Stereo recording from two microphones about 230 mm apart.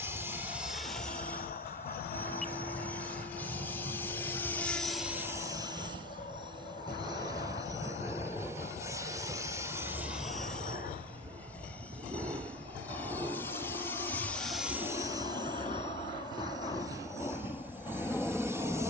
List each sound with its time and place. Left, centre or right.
0.0 s vehicle: centre
7.1 s vehicle: centre
12.1 s train: centre
13.1 s vehicle: centre
17.9 s vehicle: centre